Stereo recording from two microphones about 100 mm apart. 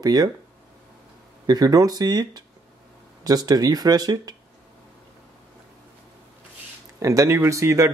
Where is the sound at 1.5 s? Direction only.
40° right (ahead or behind).